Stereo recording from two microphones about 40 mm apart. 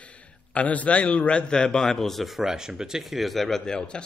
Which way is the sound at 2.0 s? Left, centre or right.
Centre.